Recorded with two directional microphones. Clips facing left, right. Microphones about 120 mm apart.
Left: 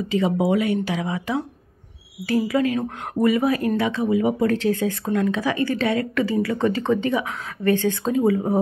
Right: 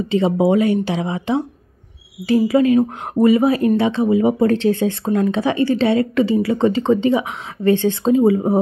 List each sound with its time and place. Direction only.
0.1 s speech: 30° right (ahead or behind)